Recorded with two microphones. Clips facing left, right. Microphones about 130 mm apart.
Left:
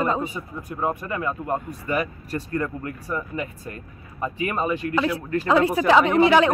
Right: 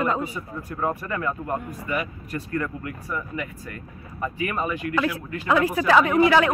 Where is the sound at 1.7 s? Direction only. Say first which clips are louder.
Left 3 dB; 35° left (ahead or behind).